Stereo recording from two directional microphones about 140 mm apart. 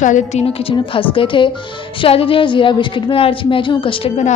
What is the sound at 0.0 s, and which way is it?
A woman's voice, 55° left (ahead or behind).